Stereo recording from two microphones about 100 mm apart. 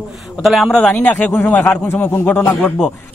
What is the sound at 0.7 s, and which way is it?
A man's voice, 15° left (ahead or behind).